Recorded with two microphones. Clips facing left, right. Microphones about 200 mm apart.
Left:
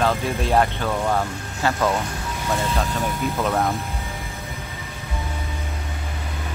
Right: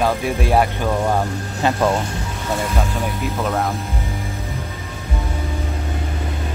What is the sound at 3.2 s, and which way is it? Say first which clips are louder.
Speech: even; centre (ahead or behind).